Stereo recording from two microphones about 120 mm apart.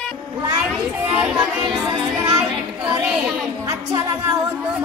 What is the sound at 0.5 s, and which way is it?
Children playing, 5° right (ahead or behind).